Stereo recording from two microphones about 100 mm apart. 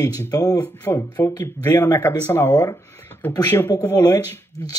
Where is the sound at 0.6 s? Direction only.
25° left (ahead or behind).